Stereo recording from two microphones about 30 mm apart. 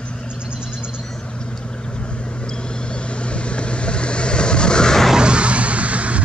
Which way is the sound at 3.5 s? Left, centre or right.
Left.